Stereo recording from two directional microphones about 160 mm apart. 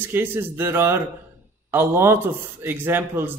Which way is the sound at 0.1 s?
15° right (ahead or behind).